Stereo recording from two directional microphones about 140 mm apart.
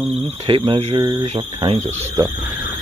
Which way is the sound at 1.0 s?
25° right (ahead or behind).